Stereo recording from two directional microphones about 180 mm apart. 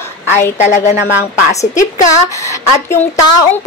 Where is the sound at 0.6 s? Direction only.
40° left (ahead or behind).